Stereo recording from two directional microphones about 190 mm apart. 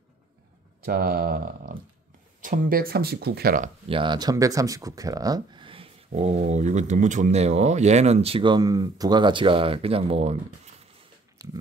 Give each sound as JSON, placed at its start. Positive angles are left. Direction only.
{"t": 0.8, "sound": "speech", "side_deg": -50}
{"t": 3.9, "sound": "speech", "side_deg": -25}